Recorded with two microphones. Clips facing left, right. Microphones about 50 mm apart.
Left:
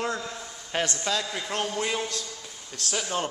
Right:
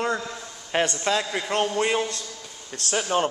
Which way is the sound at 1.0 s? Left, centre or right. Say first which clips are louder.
Right 4 dB; right.